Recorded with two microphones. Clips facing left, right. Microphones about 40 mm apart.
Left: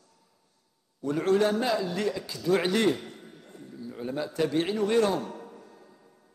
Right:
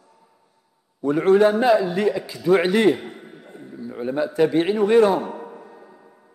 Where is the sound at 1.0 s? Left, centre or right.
Centre.